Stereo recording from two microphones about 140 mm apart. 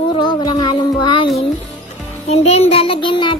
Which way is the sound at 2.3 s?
50° left (ahead or behind).